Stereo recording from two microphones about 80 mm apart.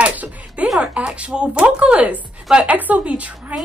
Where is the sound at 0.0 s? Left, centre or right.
Centre.